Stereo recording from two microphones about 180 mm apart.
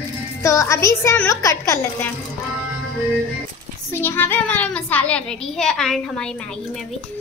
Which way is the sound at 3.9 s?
10° left (ahead or behind).